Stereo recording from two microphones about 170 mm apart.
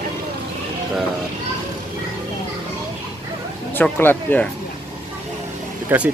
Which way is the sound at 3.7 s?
10° left (ahead or behind).